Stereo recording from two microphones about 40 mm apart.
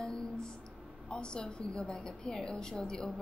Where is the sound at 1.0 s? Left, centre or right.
Left.